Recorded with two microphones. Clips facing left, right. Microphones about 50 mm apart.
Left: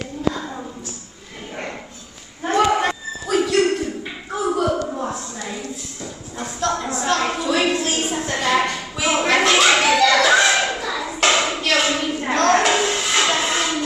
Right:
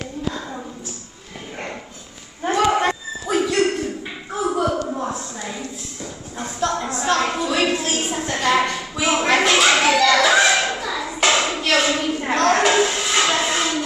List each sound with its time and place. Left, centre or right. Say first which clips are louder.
2.7 s dog: even; centre
3.3 s a sound: left 2 dB; centre
11.7 s music: right 2 dB; centre